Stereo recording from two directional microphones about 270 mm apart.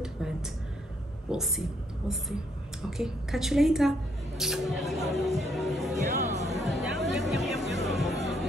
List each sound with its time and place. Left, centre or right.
0.0 s a sound: centre
1.3 s a woman's voice: centre
5.2 s music: centre
6.0 s music: right
6.5 s chatter: centre
7.0 s music: centre